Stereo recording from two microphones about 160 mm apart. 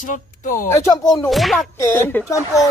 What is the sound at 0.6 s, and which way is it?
Speech, 20° left (ahead or behind).